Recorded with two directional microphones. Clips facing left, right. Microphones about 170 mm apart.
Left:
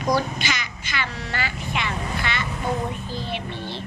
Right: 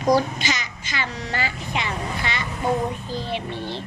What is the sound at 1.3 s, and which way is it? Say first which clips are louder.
Speech: right 2 dB; 30° right (ahead or behind).